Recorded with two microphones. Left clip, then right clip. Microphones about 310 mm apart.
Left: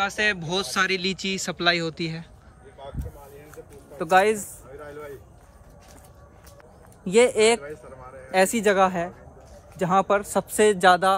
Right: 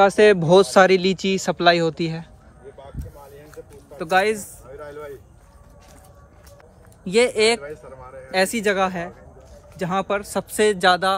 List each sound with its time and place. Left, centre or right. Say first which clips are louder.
0.0 s speech: right 10 dB; centre
4.0 s speech: even; centre
4.6 s a sound: right 3 dB; centre
7.1 s speech: right 1 dB; centre
7.6 s a sound: right 3 dB; centre
8.3 s speech: even; centre